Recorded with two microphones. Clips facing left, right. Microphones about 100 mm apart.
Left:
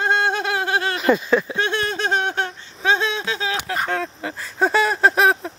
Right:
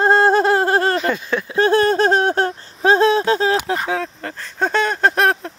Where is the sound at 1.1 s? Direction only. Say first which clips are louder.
Left 4 dB; 5° left (ahead or behind).